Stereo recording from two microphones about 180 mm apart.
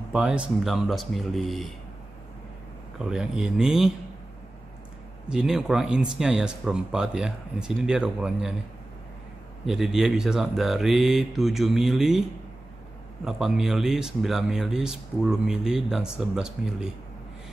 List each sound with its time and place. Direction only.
0.1 s speech: 5° right (ahead or behind)
3.1 s speech: 5° right (ahead or behind)
5.3 s speech: 5° right (ahead or behind)
9.7 s speech: centre (ahead or behind)